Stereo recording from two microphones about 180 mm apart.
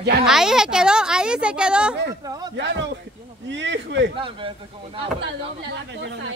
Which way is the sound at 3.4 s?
90° right.